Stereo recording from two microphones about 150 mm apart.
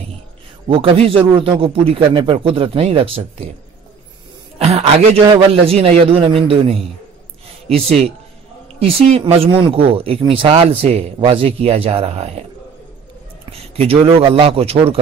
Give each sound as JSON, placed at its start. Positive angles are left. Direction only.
{"t": 0.7, "sound": "speech", "side_deg": -40}
{"t": 4.6, "sound": "speech", "side_deg": -40}
{"t": 13.5, "sound": "speech", "side_deg": -40}